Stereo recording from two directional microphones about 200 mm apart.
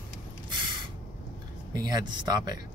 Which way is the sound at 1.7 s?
20° right (ahead or behind).